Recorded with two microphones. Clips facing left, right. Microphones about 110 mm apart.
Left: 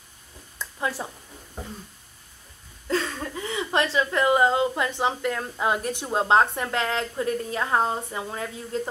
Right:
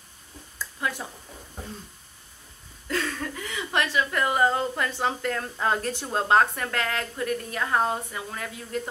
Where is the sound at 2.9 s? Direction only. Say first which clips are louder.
Left 2 dB; 25° left (ahead or behind).